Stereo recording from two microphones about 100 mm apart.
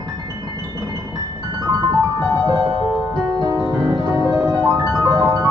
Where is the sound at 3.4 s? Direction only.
30° right (ahead or behind).